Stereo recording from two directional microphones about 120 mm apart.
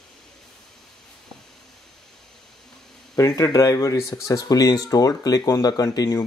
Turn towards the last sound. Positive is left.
turn(degrees=30)  # may be behind; listen again after turning